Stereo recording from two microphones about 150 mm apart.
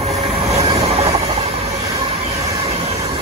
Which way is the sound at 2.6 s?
45° right (ahead or behind).